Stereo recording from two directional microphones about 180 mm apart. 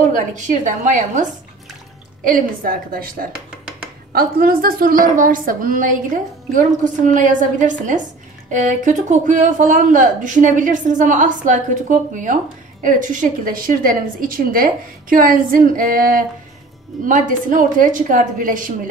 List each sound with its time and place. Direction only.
0.0 s a woman's voice: 40° right (ahead or behind)